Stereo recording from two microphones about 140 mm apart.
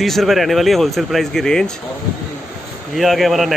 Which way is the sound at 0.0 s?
Centre (ahead or behind).